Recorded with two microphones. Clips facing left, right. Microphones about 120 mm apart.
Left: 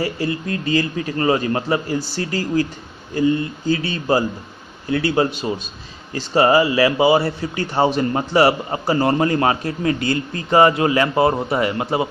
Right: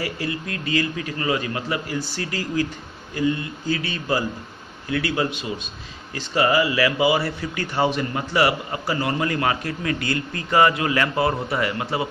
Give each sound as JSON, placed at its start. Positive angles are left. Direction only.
{"t": 0.0, "sound": "a man's voice", "side_deg": 30}